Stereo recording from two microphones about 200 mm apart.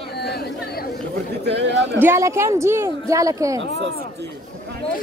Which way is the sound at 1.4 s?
60° right (ahead or behind).